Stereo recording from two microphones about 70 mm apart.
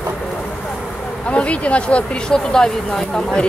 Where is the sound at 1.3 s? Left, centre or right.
Centre.